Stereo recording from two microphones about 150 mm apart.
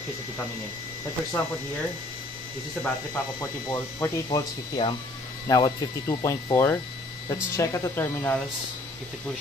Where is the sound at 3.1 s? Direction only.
20° left (ahead or behind).